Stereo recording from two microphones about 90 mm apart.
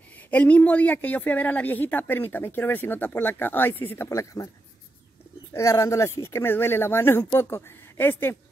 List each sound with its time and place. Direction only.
0.3 s speech: 15° left (ahead or behind)
4.1 s speech: 35° left (ahead or behind)
5.5 s speech: 35° left (ahead or behind)